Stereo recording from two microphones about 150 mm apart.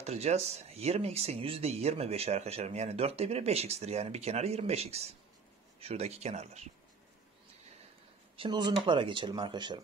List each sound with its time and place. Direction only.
0.0 s speech: 45° right (ahead or behind)
8.4 s speech: 30° right (ahead or behind)